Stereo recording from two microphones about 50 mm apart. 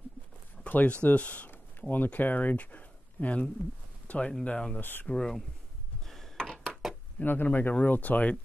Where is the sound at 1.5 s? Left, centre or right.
Left.